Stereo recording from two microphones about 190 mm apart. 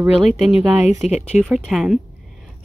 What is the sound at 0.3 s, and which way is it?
Speech, centre (ahead or behind).